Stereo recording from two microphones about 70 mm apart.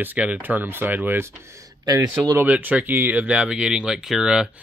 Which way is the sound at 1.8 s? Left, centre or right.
Right.